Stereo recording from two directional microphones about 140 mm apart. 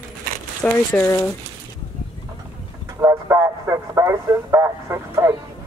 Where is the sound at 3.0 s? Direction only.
20° right (ahead or behind).